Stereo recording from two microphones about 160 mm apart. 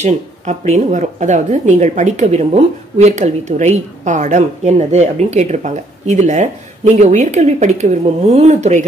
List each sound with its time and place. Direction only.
0.0 s speech: 45° right (ahead or behind)